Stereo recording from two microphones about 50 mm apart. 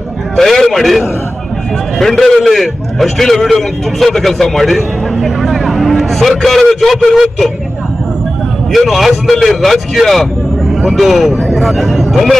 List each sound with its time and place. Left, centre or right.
0.4 s a man's voice: centre
8.7 s speech: centre